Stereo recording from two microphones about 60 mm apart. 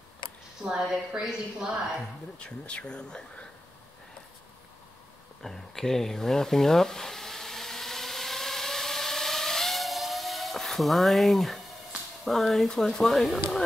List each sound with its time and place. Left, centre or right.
0.7 s speech: centre
2.3 s speech: centre
5.4 s sizzle: centre
12.3 s speech: centre